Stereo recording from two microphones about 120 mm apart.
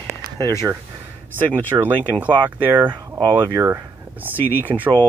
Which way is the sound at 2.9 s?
40° right (ahead or behind).